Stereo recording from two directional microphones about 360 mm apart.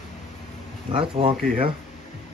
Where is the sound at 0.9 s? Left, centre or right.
Centre.